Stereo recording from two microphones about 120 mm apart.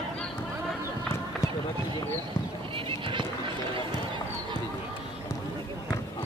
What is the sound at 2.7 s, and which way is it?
Horse, 45° right (ahead or behind).